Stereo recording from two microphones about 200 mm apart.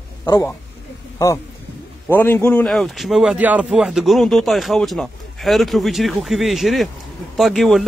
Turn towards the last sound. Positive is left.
turn(degrees=0)  # may be behind; listen again after turning